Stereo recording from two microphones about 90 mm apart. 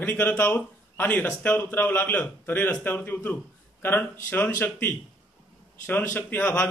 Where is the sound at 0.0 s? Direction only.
20° left (ahead or behind).